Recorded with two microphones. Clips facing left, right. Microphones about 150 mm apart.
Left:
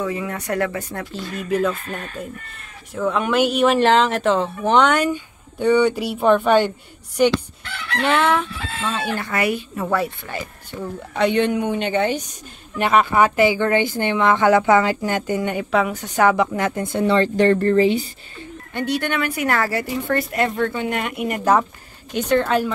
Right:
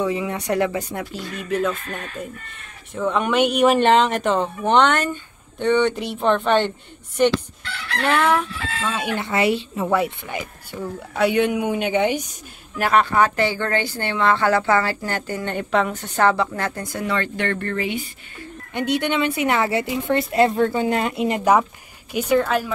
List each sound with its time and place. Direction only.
0.0 s a woman's voice: 15° right (ahead or behind)
1.4 s fowl: centre (ahead or behind)
2.9 s speech: centre (ahead or behind)
7.2 s fowl: 5° left (ahead or behind)
8.9 s a woman's voice: 20° right (ahead or behind)
12.7 s fowl: centre (ahead or behind)
13.0 s speech: 10° left (ahead or behind)
15.5 s a woman's voice: 5° left (ahead or behind); by 18.0 s 35° left (ahead or behind)
18.7 s speech: 20° right (ahead or behind)
22.3 s fowl: centre (ahead or behind)